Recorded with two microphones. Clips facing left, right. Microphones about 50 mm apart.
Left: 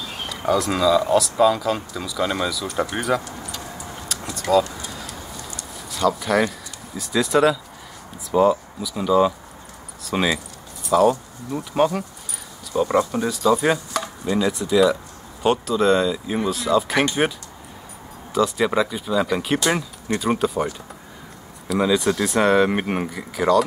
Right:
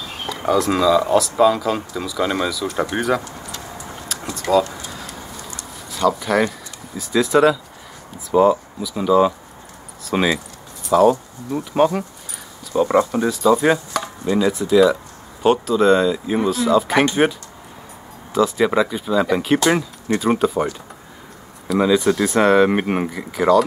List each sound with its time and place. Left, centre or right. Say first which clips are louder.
0.0 s speech: right 2 dB; centre
4.1 s a sound: right 1 dB; centre
8.3 s speech: right 3 dB; centre
21.6 s speech: right 3 dB; centre